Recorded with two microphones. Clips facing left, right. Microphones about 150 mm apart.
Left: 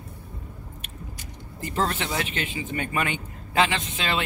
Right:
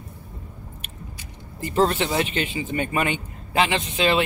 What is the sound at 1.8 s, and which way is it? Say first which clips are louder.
A man's voice: right 6 dB; 25° right (ahead or behind).